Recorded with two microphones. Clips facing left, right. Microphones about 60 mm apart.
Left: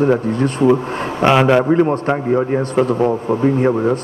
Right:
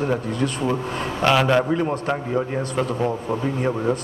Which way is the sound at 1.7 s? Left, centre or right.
Left.